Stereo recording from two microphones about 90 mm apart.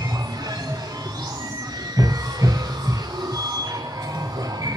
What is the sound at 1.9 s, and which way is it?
Music, 40° right (ahead or behind).